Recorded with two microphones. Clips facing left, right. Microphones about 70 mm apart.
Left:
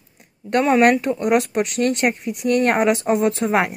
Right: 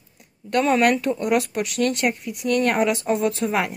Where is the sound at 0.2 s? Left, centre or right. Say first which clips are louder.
Left 2 dB; left.